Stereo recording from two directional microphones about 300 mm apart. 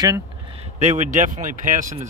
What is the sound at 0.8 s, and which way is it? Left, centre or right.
Speech, right.